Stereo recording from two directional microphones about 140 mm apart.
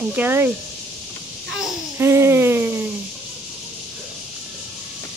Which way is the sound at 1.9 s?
20° right (ahead or behind).